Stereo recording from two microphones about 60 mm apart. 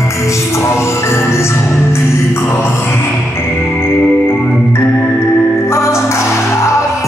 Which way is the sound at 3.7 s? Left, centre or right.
Left.